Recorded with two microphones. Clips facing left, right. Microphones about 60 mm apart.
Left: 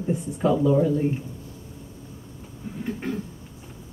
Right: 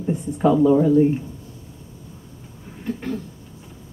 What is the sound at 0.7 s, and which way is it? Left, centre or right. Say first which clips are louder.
Music: right 3 dB; centre.